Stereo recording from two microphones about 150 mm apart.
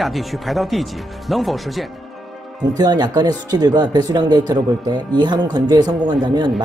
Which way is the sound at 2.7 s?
25° right (ahead or behind).